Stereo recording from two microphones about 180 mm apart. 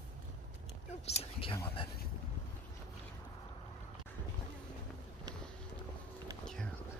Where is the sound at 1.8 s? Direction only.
30° left (ahead or behind).